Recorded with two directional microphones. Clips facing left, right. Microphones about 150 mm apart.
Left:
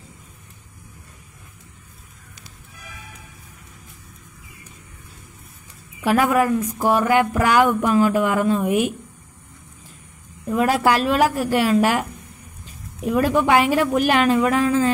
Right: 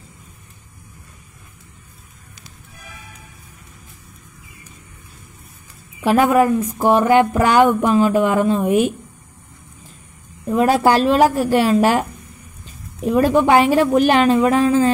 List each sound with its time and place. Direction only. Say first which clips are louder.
5.9 s speech: right 4 dB; 25° right (ahead or behind)
10.4 s speech: right 4 dB; 30° right (ahead or behind)